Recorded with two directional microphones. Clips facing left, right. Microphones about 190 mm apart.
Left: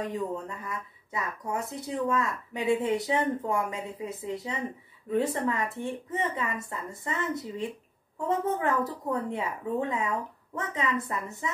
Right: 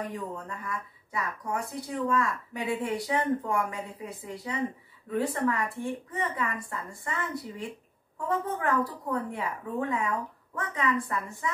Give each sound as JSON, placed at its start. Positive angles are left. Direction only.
{"t": 0.1, "sound": "speech", "side_deg": 20}